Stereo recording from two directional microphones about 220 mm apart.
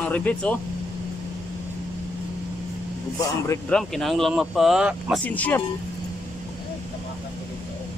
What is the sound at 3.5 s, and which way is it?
Speech, 5° left (ahead or behind).